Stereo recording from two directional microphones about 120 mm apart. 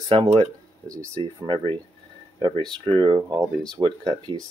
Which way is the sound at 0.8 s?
25° right (ahead or behind).